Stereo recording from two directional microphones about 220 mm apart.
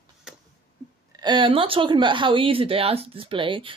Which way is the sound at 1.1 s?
20° right (ahead or behind).